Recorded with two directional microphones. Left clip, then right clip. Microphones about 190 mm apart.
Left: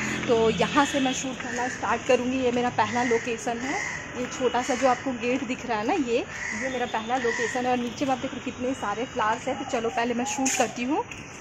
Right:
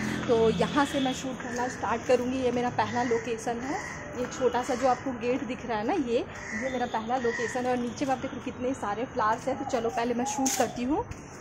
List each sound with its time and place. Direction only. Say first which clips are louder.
0.0 s speech: left 2 dB; 15° left (ahead or behind)